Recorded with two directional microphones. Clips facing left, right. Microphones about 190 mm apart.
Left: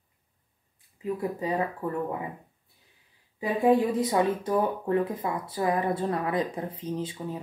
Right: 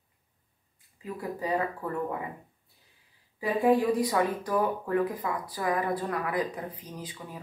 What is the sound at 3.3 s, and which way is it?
Speech, 20° left (ahead or behind).